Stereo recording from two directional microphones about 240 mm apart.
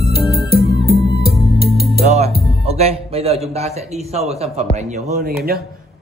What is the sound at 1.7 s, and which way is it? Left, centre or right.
Music, right.